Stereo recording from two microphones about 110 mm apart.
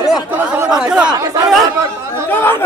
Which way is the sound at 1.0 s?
35° right (ahead or behind).